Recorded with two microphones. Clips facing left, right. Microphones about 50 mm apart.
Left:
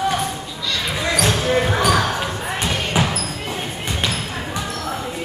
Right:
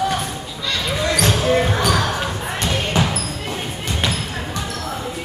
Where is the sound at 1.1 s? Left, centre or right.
Centre.